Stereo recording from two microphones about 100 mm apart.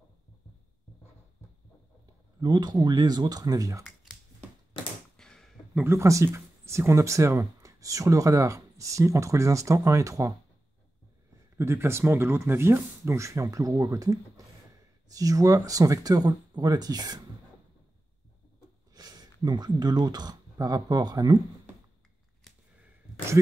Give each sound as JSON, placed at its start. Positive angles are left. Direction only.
{"t": 2.4, "sound": "speech", "side_deg": -45}
{"t": 3.8, "sound": "a sound", "side_deg": 0}
{"t": 5.9, "sound": "speech", "side_deg": -30}
{"t": 11.5, "sound": "speech", "side_deg": -25}
{"t": 18.9, "sound": "speech", "side_deg": -40}